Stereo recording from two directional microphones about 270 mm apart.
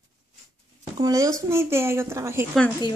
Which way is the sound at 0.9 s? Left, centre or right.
Centre.